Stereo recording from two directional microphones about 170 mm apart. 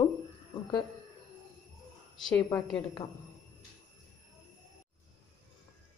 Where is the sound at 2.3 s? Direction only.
10° left (ahead or behind).